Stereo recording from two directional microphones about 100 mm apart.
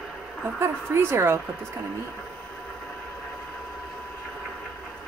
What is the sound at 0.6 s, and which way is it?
Speech, 25° right (ahead or behind).